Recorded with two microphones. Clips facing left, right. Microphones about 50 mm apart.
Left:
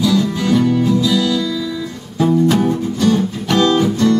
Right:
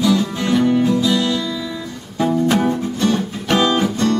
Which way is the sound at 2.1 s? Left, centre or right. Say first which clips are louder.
Left 3 dB; centre.